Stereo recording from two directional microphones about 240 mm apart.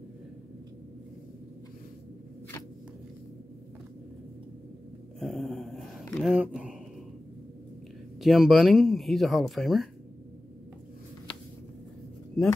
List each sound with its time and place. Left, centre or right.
5.2 s mantra: centre
8.2 s speech: centre